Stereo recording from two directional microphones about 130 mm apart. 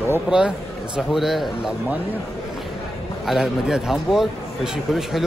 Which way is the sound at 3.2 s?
Centre (ahead or behind).